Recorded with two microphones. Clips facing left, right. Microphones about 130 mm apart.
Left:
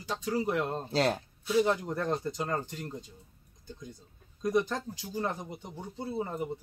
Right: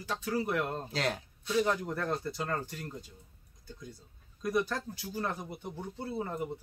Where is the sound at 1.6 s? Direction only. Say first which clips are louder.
Left 2 dB; 20° left (ahead or behind).